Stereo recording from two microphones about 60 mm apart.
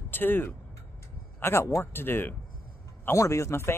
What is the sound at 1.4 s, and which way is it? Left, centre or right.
Speech, left.